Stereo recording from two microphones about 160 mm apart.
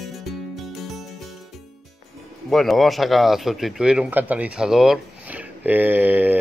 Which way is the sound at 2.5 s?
Centre (ahead or behind).